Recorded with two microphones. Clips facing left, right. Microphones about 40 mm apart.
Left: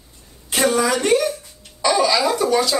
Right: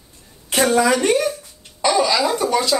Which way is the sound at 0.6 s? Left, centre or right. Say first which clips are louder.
Right 2 dB; right.